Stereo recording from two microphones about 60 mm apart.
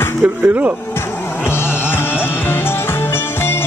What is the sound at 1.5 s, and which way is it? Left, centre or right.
Music, left.